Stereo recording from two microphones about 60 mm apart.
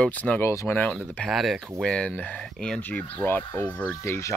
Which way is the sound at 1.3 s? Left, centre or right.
Centre.